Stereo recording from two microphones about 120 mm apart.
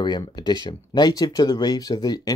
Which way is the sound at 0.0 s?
40° left (ahead or behind).